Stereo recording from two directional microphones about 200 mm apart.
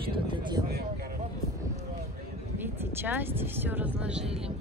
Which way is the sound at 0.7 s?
50° right (ahead or behind).